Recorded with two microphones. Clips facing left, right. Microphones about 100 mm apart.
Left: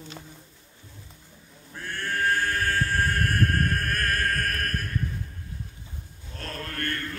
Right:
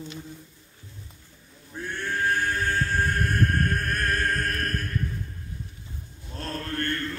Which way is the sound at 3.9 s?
20° right (ahead or behind).